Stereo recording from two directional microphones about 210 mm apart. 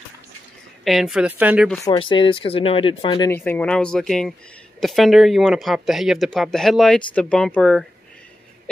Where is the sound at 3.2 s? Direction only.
10° left (ahead or behind).